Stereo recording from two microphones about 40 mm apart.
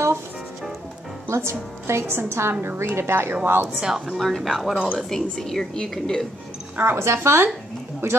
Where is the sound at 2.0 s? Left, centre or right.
Right.